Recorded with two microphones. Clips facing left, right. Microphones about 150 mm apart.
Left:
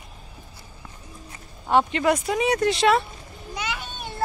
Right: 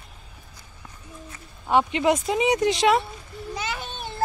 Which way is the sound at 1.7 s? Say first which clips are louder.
Even; 10° right (ahead or behind).